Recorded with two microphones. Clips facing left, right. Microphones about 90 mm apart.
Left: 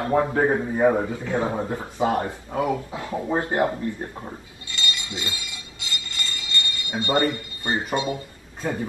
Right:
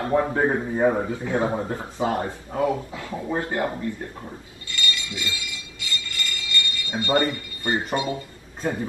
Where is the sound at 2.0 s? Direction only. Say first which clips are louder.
Left 2 dB; 20° left (ahead or behind).